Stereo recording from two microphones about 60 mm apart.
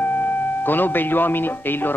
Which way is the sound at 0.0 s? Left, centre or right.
Left.